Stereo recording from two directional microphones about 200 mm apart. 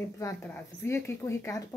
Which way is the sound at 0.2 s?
15° left (ahead or behind).